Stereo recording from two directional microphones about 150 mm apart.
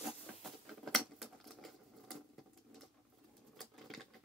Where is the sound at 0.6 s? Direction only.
Centre (ahead or behind).